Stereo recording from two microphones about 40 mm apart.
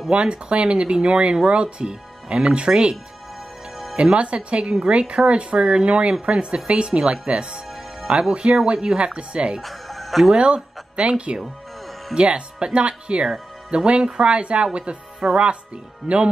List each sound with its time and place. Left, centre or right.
0.1 s speech: right
3.9 s speech: right
9.6 s music: centre
10.3 s speech: right